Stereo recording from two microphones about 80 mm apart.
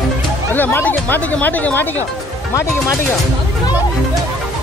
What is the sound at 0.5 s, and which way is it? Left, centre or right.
Speech, left.